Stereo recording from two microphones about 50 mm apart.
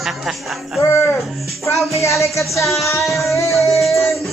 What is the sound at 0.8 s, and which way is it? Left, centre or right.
Speech, left.